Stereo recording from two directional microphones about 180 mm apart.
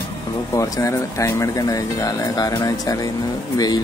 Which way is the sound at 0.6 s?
15° left (ahead or behind).